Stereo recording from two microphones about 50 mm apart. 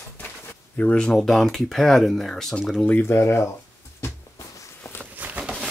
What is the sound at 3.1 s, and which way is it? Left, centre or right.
Speech, left.